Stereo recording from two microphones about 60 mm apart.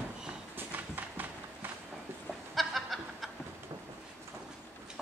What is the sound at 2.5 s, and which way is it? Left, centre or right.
Snicker, centre.